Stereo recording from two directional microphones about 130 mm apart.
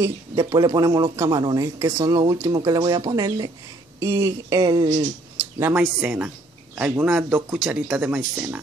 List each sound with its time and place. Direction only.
0.4 s speech: 30° right (ahead or behind)
1.8 s speech: 20° right (ahead or behind)
2.0 s speech: 30° right (ahead or behind)
5.6 s speech: 15° right (ahead or behind)